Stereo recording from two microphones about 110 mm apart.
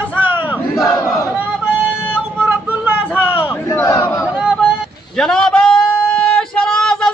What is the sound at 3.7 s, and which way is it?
Battle cry, 25° left (ahead or behind).